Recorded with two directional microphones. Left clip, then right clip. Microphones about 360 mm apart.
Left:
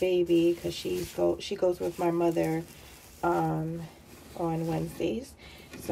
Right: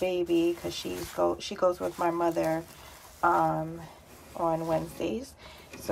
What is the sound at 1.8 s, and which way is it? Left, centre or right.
Speech, right.